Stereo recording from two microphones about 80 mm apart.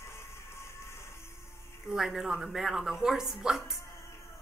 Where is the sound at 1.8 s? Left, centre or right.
Centre.